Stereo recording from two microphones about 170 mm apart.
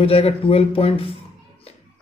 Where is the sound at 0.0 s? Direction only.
35° left (ahead or behind).